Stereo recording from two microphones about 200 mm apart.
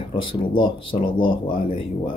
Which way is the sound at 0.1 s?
25° left (ahead or behind).